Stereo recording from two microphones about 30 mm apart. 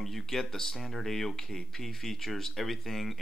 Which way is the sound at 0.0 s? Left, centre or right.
Centre.